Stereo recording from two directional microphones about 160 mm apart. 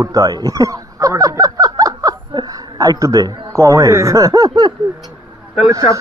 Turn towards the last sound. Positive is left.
turn(degrees=-20)  # may be behind; listen again after turning